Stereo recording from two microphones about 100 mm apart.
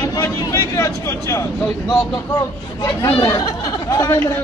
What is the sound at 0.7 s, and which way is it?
A man's voice, 25° left (ahead or behind).